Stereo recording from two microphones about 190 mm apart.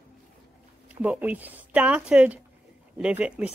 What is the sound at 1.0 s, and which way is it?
A woman's voice, 10° right (ahead or behind).